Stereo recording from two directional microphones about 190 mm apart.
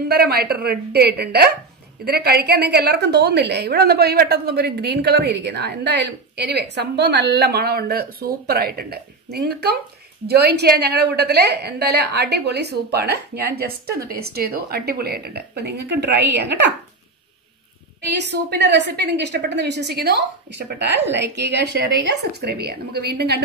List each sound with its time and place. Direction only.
0.1 s a woman's voice: 55° right (ahead or behind)
18.0 s a woman's voice: 65° right (ahead or behind)